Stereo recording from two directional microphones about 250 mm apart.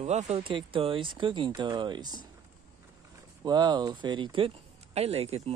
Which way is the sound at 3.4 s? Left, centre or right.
Centre.